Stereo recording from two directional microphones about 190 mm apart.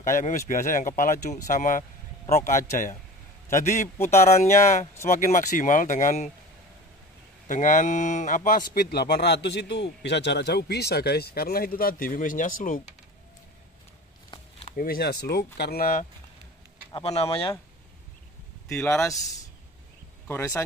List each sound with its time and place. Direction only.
0.0 s speech: 45° left (ahead or behind)
7.4 s speech: 40° left (ahead or behind)
14.8 s speech: 55° left (ahead or behind)
16.9 s speech: 30° left (ahead or behind)
18.7 s a man's voice: 5° left (ahead or behind)
20.2 s speech: 15° left (ahead or behind)